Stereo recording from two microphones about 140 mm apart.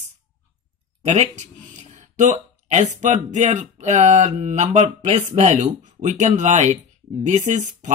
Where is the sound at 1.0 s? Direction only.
55° right (ahead or behind).